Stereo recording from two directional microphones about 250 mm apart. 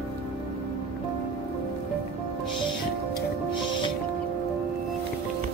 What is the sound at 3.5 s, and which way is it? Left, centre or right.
Music, centre.